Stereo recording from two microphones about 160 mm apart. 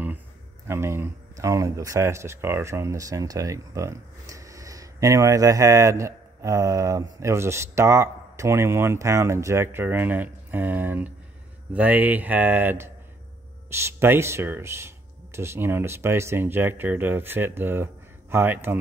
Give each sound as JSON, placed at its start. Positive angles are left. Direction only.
{"t": 0.7, "sound": "speech", "side_deg": -15}